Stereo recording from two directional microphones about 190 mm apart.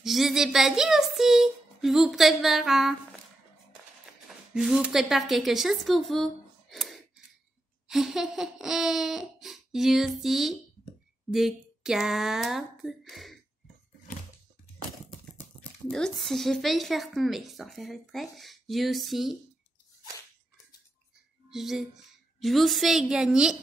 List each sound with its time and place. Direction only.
0.0 s speech: centre (ahead or behind)
4.3 s a woman's voice: 5° right (ahead or behind)
15.9 s speech: centre (ahead or behind)
21.5 s speech: centre (ahead or behind)